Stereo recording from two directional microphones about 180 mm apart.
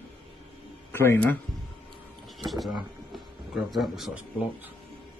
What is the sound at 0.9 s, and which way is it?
Speech, 15° left (ahead or behind).